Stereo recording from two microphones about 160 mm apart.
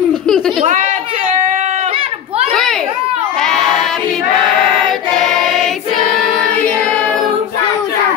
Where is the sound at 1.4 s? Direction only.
50° right (ahead or behind).